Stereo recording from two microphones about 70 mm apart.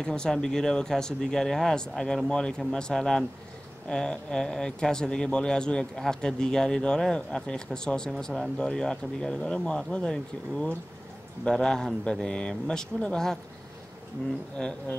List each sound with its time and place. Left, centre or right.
0.0 s speech: centre
14.6 s speech: centre